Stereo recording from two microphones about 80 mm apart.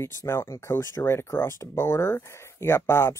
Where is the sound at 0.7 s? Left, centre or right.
Left.